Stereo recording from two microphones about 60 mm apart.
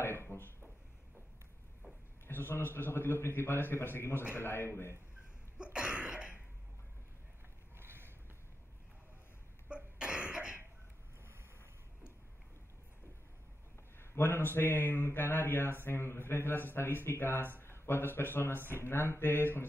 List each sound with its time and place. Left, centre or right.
0.0 s a sound: left
2.2 s speech: left
5.6 s a sound: centre
7.7 s boat: right
9.7 s cough: centre
13.9 s speech: left